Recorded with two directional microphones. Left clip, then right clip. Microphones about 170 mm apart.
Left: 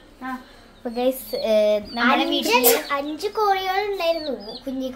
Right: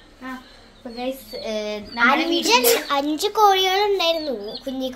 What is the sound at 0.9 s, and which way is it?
Speech, 70° left (ahead or behind).